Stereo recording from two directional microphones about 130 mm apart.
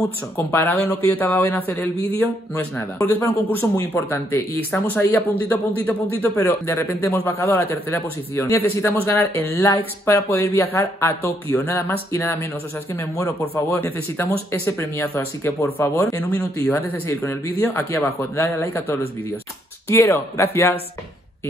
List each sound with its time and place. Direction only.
0.5 s a man's voice: 20° left (ahead or behind)